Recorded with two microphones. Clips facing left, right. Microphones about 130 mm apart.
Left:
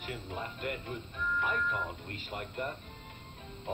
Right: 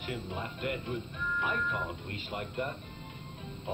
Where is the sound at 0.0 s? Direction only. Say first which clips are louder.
Right 2 dB; 45° left (ahead or behind).